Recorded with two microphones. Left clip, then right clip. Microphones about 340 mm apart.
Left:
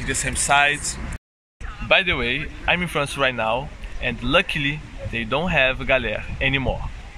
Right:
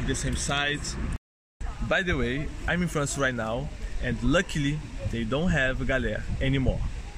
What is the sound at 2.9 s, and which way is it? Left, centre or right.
Speech, left.